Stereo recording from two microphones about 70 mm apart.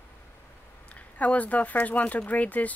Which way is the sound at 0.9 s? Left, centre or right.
Left.